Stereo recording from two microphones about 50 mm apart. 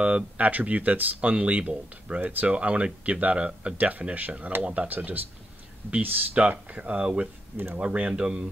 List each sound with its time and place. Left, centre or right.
0.0 s speech: right
1.3 s speech: right
2.2 s speech: right
2.5 s speech: right
3.7 s speech: right
6.8 s speech: right
7.5 s speech: right
7.8 s speech: right